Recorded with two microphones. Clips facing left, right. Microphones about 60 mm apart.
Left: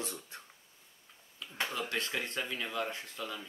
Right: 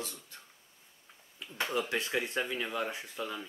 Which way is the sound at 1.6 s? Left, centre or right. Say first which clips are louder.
Right 3 dB; right.